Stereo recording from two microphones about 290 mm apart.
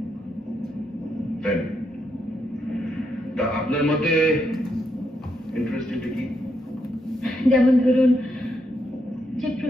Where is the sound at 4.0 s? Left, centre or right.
Centre.